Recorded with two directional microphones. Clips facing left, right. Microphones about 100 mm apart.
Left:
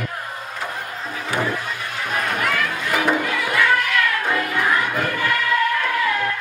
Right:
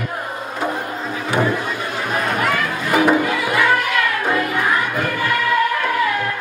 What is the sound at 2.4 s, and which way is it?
Music, 25° right (ahead or behind).